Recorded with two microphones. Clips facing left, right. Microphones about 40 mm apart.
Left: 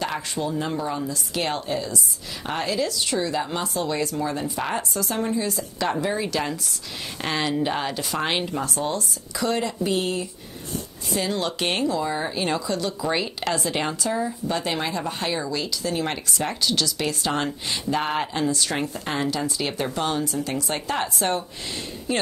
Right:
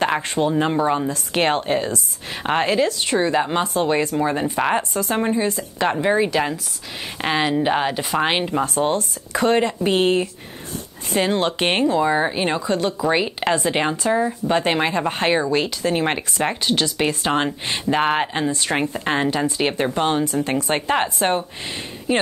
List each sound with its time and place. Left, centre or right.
0.0 s speech: right